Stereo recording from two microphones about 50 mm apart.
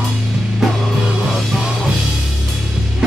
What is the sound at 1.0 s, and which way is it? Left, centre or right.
Music, centre.